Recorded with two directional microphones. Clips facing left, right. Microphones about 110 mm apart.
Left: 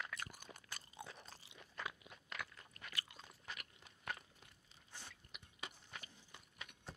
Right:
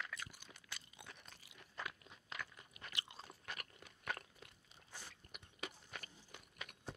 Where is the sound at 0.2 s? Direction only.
45° left (ahead or behind); by 2.0 s 25° left (ahead or behind).